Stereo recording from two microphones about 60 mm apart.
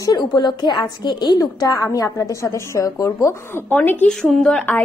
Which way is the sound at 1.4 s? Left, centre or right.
Left.